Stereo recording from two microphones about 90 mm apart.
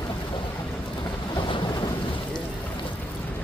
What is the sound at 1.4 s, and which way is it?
Boat, 70° left (ahead or behind).